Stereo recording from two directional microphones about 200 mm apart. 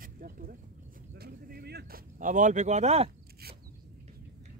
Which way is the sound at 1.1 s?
50° right (ahead or behind).